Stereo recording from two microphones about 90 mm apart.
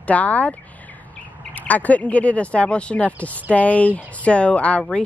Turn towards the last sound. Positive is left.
turn(degrees=15)  # may be behind; listen again after turning